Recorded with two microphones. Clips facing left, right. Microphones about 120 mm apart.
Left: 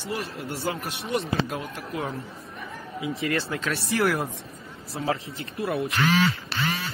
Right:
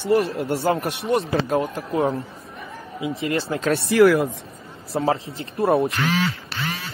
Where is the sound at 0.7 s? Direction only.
80° right.